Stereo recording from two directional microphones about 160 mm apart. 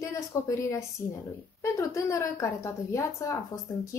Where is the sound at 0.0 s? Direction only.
20° left (ahead or behind).